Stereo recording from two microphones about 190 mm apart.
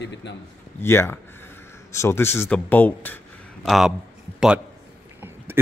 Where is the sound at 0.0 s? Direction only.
65° left (ahead or behind).